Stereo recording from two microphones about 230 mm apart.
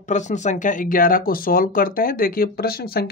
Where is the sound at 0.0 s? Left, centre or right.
Left.